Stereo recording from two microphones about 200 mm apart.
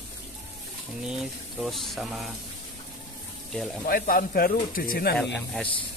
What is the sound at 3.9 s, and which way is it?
Speech, 45° left (ahead or behind).